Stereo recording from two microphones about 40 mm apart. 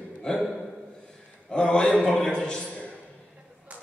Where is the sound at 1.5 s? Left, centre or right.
Left.